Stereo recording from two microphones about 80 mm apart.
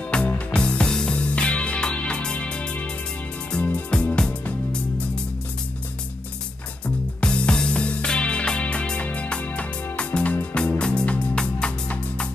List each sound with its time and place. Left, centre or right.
0.1 s music: centre
3.9 s music: centre
7.2 s music: centre